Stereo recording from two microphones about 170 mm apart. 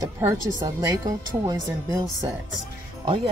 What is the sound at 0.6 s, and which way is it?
Speech, 25° right (ahead or behind).